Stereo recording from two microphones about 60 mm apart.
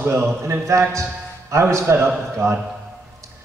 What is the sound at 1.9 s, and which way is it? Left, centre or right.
Speech, right.